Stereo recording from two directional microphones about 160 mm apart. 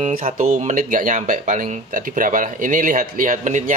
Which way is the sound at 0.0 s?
45° right (ahead or behind).